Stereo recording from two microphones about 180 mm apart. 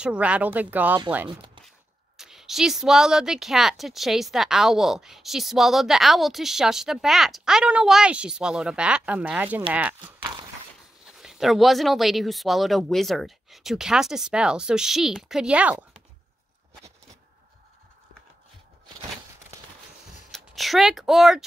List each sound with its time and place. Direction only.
0.0 s speech: 5° right (ahead or behind)
1.3 s speech: 25° right (ahead or behind)
2.1 s a woman's voice: centre (ahead or behind)
11.1 s a woman's voice: centre (ahead or behind)
20.2 s speech: centre (ahead or behind)